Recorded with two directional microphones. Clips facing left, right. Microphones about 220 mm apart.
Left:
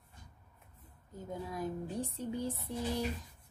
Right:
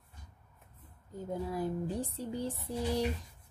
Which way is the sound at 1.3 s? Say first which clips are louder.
Right 4 dB; 30° right (ahead or behind).